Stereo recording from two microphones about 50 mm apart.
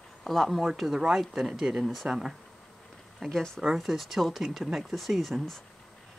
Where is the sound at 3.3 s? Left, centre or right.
Centre.